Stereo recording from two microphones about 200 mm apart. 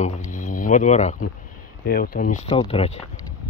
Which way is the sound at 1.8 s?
50° left (ahead or behind).